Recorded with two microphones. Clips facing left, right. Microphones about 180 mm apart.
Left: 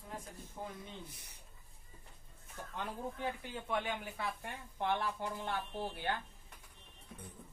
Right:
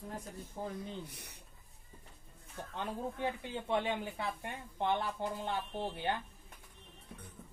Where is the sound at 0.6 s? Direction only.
40° right (ahead or behind).